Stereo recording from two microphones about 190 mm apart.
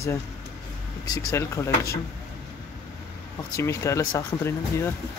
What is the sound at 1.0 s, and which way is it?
Speech, 15° left (ahead or behind).